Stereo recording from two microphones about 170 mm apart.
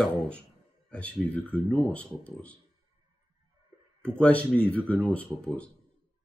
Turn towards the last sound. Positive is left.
turn(degrees=10)  # may be behind; listen again after turning